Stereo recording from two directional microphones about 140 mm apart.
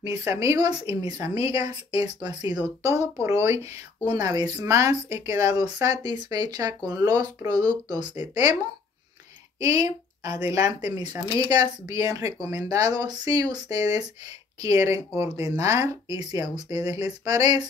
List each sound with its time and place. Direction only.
0.0 s speech: 20° right (ahead or behind)
9.6 s speech: 25° right (ahead or behind)